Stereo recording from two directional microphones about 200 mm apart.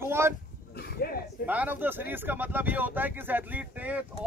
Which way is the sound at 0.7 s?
50° left (ahead or behind).